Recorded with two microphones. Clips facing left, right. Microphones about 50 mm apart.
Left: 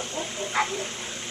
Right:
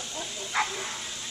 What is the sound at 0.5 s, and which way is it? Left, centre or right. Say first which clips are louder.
Speech: left 2 dB; centre.